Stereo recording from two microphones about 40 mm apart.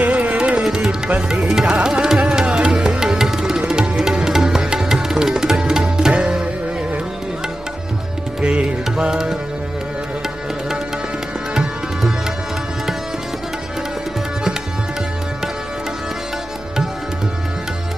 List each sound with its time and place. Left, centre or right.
0.0 s music: right
0.6 s tabla: centre
1.0 s tabla: centre
2.2 s music: centre
4.1 s music: centre
8.4 s music: right
11.5 s tabla: centre